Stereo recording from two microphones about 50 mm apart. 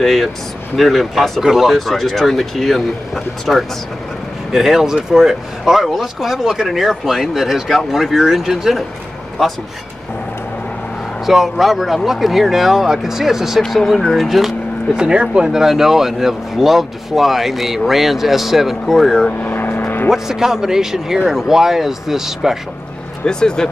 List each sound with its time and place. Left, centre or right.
0.0 s speech: centre
11.2 s speech: centre
15.0 s speech: centre
19.4 s vehicle: left
20.1 s speech: centre
23.2 s speech: centre